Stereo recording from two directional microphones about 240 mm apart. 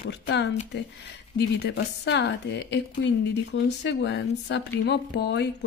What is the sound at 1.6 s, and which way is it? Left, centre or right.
Speech, left.